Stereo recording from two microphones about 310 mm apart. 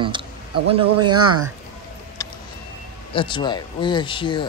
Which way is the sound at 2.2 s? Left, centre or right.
Centre.